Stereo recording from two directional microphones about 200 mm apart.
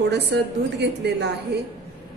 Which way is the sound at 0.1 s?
60° right (ahead or behind).